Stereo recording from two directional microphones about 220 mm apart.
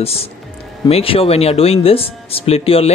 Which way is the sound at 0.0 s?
25° left (ahead or behind).